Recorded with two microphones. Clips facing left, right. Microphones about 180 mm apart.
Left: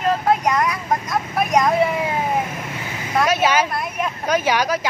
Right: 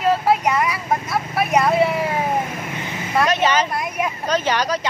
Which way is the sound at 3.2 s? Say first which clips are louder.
Left 1 dB; 10° left (ahead or behind).